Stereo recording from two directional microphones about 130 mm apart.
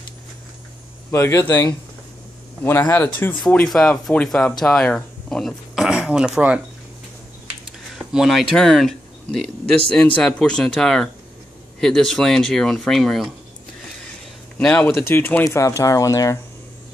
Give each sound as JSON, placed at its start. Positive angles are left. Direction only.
{"t": 1.1, "sound": "speech", "side_deg": 20}
{"t": 3.2, "sound": "speech", "side_deg": 15}
{"t": 7.9, "sound": "speech", "side_deg": 0}
{"t": 14.6, "sound": "speech", "side_deg": 10}